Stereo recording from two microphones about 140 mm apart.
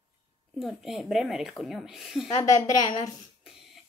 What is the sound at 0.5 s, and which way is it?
Speech, centre (ahead or behind).